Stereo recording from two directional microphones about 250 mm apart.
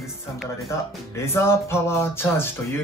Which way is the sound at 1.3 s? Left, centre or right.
Centre.